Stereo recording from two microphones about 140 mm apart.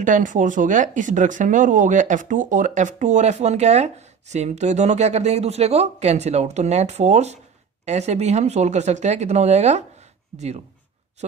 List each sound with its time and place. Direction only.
0.0 s speech: 65° right (ahead or behind)